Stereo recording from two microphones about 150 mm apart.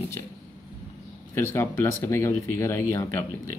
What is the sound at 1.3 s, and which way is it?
Speech, 15° left (ahead or behind).